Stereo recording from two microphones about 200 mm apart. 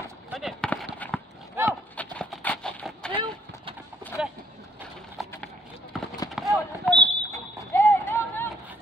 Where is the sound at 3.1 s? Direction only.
25° right (ahead or behind).